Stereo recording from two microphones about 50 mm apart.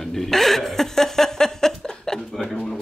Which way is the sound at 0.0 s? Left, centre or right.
Centre.